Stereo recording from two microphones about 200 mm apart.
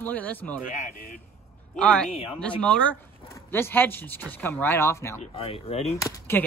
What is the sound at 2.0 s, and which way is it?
Speech, 30° left (ahead or behind).